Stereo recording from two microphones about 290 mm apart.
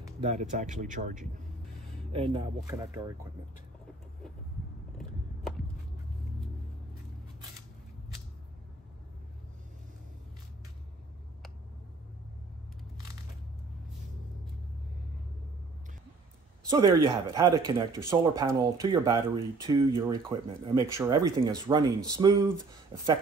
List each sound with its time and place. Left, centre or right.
0.0 s speech: right
16.6 s speech: centre